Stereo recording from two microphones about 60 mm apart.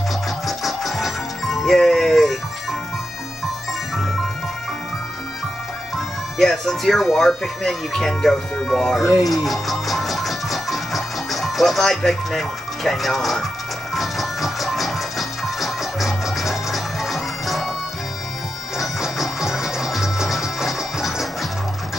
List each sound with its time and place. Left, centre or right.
0.5 s music: centre
5.9 s speech: centre
9.0 s music: centre
18.8 s music: centre